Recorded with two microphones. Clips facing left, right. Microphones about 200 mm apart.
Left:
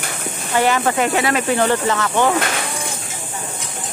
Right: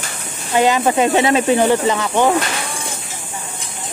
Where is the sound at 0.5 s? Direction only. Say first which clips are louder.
Right 3 dB; 15° right (ahead or behind).